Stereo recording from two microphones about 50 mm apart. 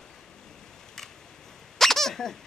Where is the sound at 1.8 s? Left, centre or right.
Centre.